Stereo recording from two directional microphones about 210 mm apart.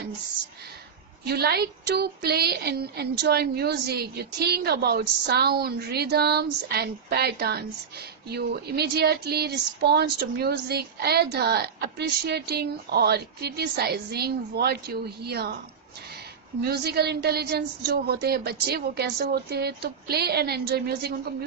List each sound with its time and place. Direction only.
1.2 s speech: 50° right (ahead or behind)
16.6 s speech: 50° right (ahead or behind)